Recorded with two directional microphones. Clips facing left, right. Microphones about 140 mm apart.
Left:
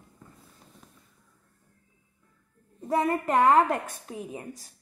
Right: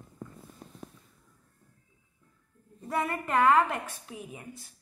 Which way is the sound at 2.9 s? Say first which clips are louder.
Left 5 dB; 35° left (ahead or behind).